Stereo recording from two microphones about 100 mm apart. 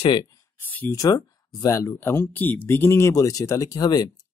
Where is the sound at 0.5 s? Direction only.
20° left (ahead or behind).